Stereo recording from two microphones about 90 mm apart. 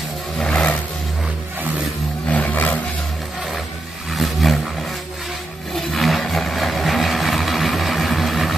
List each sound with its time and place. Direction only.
0.4 s vehicle: 10° left (ahead or behind)
2.2 s vehicle: 15° left (ahead or behind)
4.1 s vehicle: centre (ahead or behind)
5.8 s vehicle: centre (ahead or behind)